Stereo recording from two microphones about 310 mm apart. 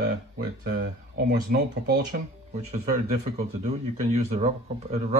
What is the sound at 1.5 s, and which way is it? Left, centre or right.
Speech, right.